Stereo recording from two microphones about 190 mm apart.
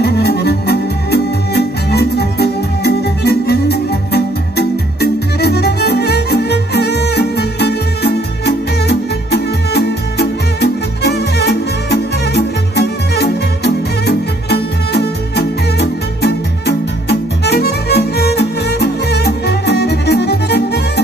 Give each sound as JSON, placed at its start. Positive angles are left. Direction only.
{"t": 0.0, "sound": "music", "side_deg": 60}